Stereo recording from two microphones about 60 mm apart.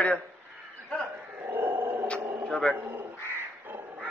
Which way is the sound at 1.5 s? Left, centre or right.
Right.